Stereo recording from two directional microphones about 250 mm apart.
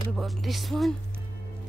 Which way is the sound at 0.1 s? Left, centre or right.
Centre.